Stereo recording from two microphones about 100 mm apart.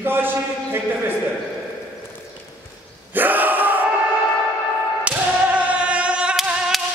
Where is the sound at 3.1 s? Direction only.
20° right (ahead or behind).